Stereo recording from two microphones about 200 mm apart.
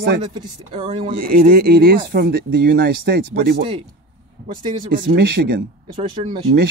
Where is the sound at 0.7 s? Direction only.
30° right (ahead or behind).